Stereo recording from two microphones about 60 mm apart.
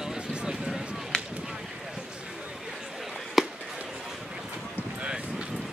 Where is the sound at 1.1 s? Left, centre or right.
Centre.